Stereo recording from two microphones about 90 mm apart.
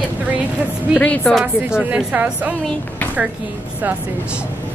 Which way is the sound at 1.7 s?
15° right (ahead or behind).